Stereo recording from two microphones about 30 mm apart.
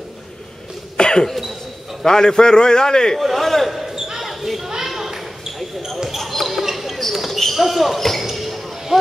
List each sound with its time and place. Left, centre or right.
0.9 s cough: left
2.0 s a man's voice: left
3.3 s a sound: centre
3.8 s basketball bounce: centre
4.2 s basketball bounce: centre
7.5 s basketball bounce: centre